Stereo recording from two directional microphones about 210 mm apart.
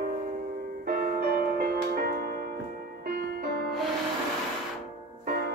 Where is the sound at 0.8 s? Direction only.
45° right (ahead or behind).